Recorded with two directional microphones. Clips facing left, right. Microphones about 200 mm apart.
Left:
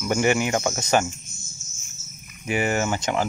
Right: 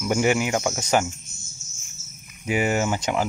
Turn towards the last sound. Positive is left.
turn(degrees=-10)  # may be behind; listen again after turning